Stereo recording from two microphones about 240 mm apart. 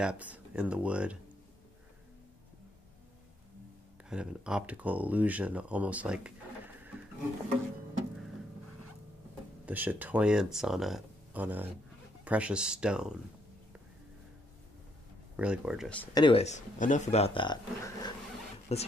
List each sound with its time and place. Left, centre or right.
0.0 s speech: centre
4.1 s speech: centre
9.7 s speech: centre
15.3 s speech: centre
16.2 s speech: left